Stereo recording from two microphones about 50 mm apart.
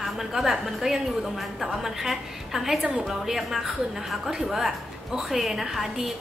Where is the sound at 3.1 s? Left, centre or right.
Centre.